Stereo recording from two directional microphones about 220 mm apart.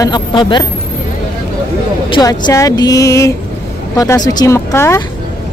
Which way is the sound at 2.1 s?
15° left (ahead or behind).